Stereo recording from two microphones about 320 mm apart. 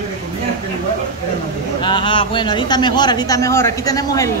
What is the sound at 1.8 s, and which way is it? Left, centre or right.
A woman's voice, centre.